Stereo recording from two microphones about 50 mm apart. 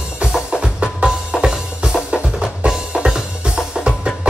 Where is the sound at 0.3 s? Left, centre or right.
Centre.